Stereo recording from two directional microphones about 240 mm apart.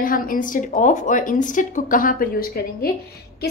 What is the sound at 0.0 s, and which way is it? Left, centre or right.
A woman's voice, left.